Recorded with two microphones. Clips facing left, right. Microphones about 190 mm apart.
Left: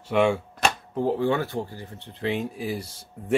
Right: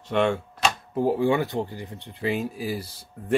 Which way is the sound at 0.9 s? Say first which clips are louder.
Right 3 dB; 10° right (ahead or behind).